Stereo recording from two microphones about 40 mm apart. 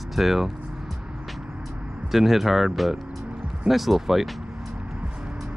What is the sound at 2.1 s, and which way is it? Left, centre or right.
Speech, centre.